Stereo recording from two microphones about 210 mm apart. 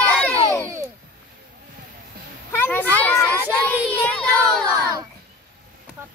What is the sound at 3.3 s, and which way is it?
Speech, 10° right (ahead or behind).